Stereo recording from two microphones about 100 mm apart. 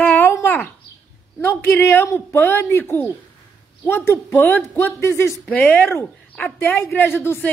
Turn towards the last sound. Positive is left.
turn(degrees=25)  # may be behind; listen again after turning